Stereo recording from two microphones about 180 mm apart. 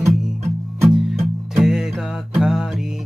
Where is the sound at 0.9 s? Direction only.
Centre (ahead or behind).